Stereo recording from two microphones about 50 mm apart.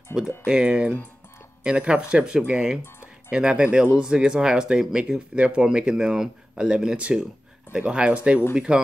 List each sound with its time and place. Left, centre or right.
0.1 s speech: centre
0.5 s speech: centre